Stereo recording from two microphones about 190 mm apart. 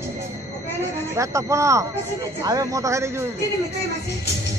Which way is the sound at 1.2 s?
15° right (ahead or behind).